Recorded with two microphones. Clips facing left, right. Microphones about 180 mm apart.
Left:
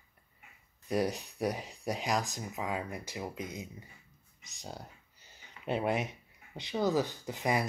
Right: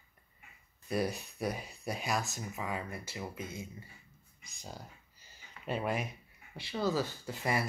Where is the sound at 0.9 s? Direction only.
15° left (ahead or behind).